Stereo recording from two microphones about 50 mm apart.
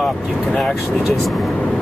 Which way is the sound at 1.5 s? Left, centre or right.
Centre.